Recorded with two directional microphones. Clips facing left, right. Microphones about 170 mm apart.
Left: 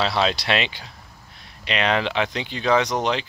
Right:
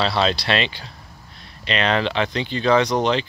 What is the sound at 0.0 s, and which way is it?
Speech, 10° left (ahead or behind).